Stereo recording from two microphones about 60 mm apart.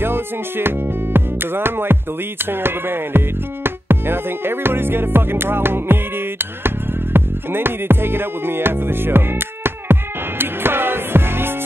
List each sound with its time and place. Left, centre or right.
0.0 s music: right